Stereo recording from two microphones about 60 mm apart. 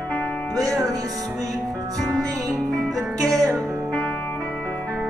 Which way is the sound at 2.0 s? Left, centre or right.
Centre.